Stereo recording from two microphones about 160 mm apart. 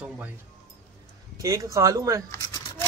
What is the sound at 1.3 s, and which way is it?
Speech, 20° right (ahead or behind).